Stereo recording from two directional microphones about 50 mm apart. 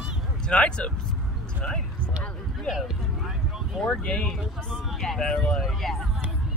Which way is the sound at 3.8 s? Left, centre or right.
Centre.